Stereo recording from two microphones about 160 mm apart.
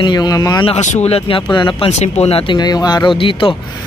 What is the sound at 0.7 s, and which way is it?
Speech, 45° left (ahead or behind).